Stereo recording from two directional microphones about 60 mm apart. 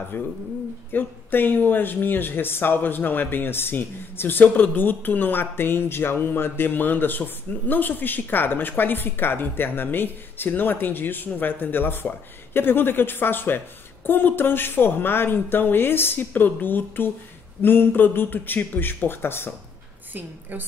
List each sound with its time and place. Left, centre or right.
0.1 s speech: left
20.2 s a woman's voice: right